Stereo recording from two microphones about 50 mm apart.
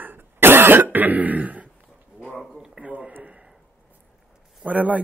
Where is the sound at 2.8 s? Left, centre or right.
Right.